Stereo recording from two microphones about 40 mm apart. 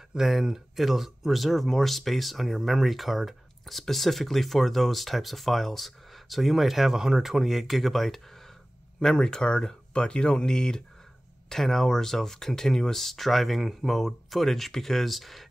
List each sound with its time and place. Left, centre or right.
0.1 s speech: centre
9.0 s speech: centre